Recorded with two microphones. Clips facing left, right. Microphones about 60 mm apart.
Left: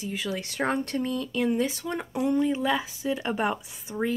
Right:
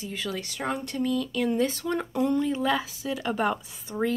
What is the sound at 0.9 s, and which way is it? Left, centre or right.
Speech, left.